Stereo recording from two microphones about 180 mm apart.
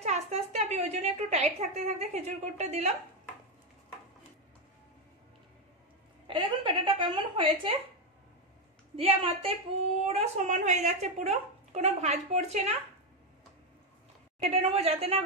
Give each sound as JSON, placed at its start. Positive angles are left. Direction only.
{"t": 0.0, "sound": "a woman's voice", "side_deg": -35}
{"t": 6.2, "sound": "a woman's voice", "side_deg": -25}
{"t": 8.9, "sound": "a woman's voice", "side_deg": -30}
{"t": 14.4, "sound": "a woman's voice", "side_deg": -35}